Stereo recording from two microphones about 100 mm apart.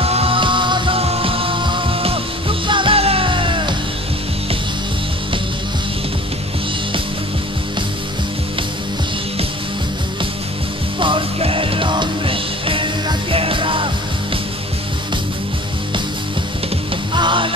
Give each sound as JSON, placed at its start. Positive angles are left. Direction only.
{"t": 0.0, "sound": "music", "side_deg": -75}
{"t": 11.0, "sound": "music", "side_deg": -60}
{"t": 17.1, "sound": "music", "side_deg": -55}